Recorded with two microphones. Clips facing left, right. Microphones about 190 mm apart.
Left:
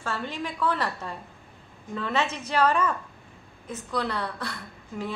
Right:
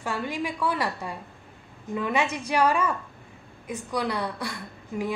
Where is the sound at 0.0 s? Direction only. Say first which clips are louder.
Right 2 dB; 10° right (ahead or behind).